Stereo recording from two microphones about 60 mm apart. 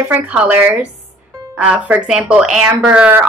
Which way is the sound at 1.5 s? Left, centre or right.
Right.